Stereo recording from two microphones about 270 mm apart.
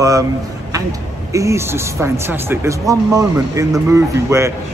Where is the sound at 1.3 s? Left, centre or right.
Centre.